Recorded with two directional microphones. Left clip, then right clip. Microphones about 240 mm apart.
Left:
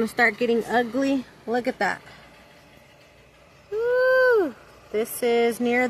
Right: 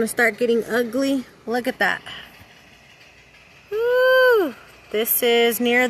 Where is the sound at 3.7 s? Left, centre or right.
Centre.